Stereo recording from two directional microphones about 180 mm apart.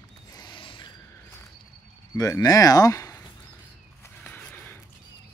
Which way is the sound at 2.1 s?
20° left (ahead or behind).